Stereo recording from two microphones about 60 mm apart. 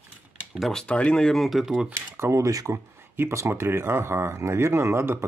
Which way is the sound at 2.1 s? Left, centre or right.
Right.